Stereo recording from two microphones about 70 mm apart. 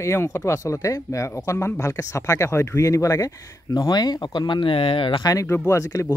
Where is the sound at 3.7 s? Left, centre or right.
Left.